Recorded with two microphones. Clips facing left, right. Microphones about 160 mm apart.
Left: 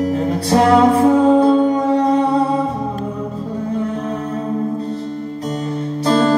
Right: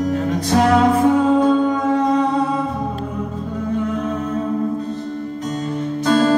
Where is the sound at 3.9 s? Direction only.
30° left (ahead or behind).